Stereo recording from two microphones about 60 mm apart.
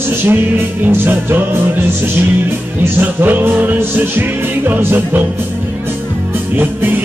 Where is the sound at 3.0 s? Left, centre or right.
Right.